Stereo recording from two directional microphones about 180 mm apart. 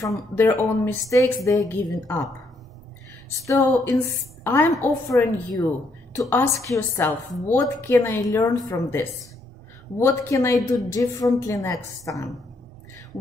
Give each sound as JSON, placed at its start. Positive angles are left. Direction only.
{"t": 0.0, "sound": "a woman's voice", "side_deg": 15}
{"t": 3.4, "sound": "a woman's voice", "side_deg": 15}
{"t": 6.7, "sound": "a woman's voice", "side_deg": 15}